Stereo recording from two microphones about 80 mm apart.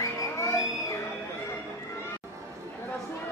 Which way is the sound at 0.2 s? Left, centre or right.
Left.